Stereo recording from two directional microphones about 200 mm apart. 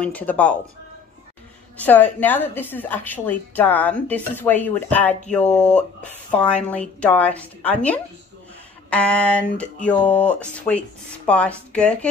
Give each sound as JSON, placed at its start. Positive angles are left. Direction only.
{"t": 0.0, "sound": "a woman's voice", "side_deg": 5}
{"t": 1.8, "sound": "a woman's voice", "side_deg": 10}